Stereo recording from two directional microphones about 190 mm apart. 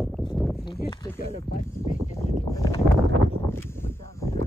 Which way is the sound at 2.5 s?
20° left (ahead or behind).